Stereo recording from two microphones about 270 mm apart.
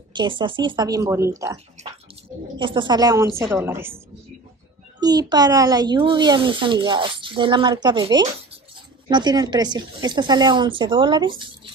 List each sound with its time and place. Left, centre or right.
0.2 s speech: centre
5.0 s speech: centre